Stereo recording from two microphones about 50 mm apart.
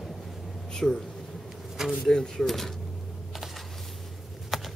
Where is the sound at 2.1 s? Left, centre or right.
Centre.